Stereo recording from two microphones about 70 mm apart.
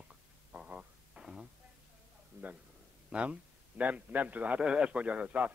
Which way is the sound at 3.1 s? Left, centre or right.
Centre.